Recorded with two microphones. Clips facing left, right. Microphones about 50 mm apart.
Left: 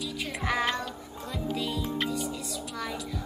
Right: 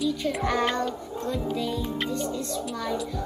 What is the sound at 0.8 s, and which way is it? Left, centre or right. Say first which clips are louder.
A child's voice: right 8 dB; centre.